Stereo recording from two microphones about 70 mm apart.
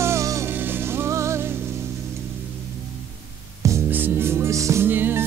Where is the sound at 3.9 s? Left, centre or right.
Right.